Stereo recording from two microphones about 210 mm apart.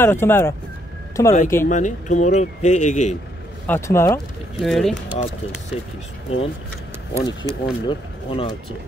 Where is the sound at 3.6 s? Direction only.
10° left (ahead or behind).